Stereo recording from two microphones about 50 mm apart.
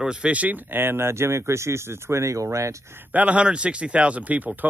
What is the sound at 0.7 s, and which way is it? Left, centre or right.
Speech, right.